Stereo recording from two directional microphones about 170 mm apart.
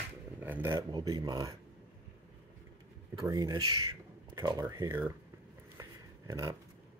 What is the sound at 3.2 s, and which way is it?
Speech, 20° right (ahead or behind).